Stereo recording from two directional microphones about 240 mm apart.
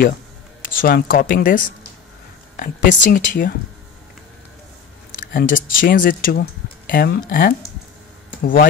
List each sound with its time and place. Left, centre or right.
0.7 s speech: left
5.3 s speech: left